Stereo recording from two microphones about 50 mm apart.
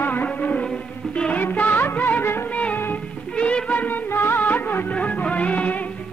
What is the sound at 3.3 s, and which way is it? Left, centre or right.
Music, left.